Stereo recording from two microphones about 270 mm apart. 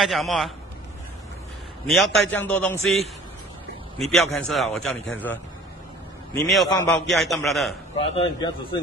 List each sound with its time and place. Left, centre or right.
0.0 s a man's voice: centre
1.9 s a man's voice: centre
4.0 s a man's voice: centre
6.5 s a man's voice: centre
8.0 s speech: left